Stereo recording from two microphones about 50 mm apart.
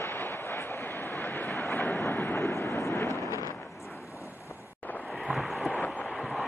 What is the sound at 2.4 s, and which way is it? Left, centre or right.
Vehicle, left.